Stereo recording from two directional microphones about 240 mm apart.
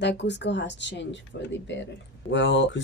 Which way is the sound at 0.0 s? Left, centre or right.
Left.